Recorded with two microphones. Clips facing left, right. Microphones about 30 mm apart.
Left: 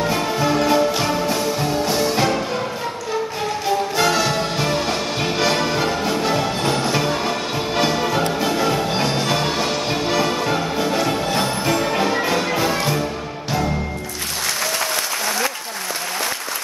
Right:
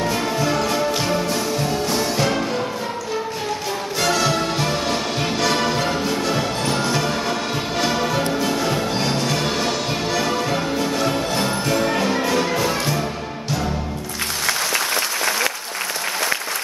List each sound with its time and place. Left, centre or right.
0.7 s music: centre
4.0 s music: centre